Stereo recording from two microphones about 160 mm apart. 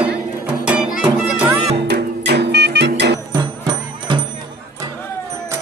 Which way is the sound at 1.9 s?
90° right.